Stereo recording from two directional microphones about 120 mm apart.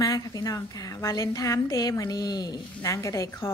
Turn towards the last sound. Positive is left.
turn(degrees=25)  # may be behind; listen again after turning